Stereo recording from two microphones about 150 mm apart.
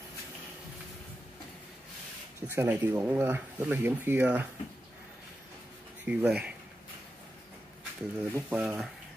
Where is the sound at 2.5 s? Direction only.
15° right (ahead or behind).